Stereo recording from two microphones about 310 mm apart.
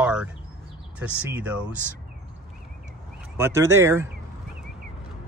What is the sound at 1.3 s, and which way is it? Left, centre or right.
Speech, centre.